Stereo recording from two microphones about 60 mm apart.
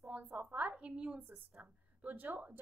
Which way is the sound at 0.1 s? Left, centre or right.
Right.